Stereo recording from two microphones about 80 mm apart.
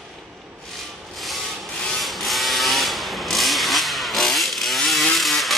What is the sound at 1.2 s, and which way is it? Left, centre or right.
Wood, centre.